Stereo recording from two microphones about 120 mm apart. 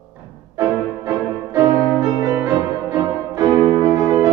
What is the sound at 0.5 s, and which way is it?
Music, 25° right (ahead or behind).